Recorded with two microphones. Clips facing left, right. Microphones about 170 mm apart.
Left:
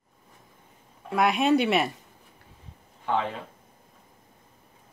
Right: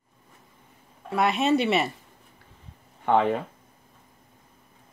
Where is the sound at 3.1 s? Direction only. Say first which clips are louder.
Right 6 dB; 55° right (ahead or behind).